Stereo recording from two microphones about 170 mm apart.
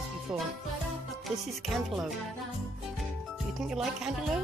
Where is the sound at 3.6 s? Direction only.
Centre (ahead or behind).